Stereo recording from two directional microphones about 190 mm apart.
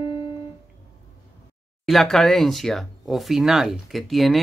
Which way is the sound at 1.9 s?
Centre (ahead or behind).